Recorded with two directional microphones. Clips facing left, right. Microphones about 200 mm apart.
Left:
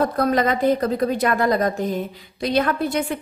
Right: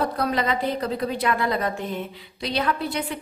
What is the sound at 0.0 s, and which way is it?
A woman's voice, 45° left (ahead or behind).